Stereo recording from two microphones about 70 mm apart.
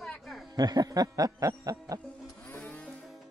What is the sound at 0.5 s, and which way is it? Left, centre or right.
Music, right.